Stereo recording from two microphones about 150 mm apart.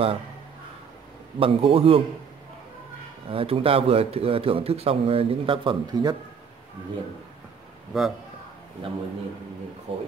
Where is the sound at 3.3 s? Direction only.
40° right (ahead or behind).